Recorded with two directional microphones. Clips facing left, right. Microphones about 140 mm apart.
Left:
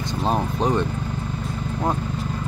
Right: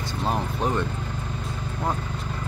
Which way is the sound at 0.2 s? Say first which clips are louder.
Left 4 dB; 20° left (ahead or behind).